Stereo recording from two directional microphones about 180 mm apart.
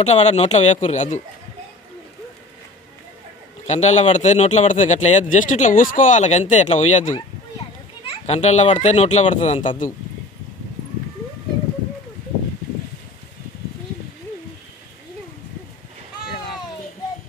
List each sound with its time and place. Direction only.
0.0 s speech: 35° left (ahead or behind)
3.6 s speech: 40° left (ahead or behind)